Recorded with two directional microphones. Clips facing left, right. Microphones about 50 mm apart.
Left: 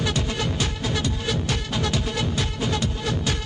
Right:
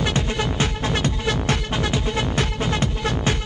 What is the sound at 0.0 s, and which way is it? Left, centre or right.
Music, right.